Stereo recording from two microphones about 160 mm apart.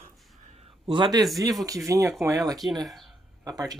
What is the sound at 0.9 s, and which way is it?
Speech, 30° right (ahead or behind).